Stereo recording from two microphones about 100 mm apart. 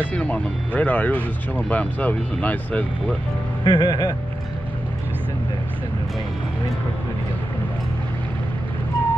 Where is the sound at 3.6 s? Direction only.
45° left (ahead or behind).